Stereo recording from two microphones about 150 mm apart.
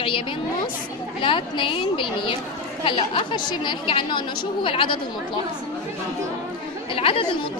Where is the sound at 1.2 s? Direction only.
35° left (ahead or behind).